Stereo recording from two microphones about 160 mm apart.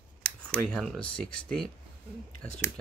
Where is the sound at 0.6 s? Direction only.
5° left (ahead or behind).